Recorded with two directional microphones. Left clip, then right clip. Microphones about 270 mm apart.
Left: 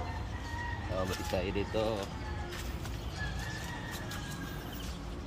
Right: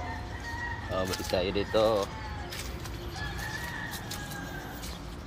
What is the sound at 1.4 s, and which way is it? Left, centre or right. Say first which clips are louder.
Speech: right 10 dB; centre.